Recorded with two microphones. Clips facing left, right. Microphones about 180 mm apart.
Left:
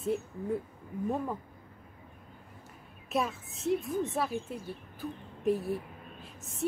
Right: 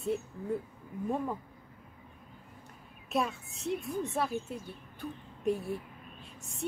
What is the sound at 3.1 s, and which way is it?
Speech, centre (ahead or behind).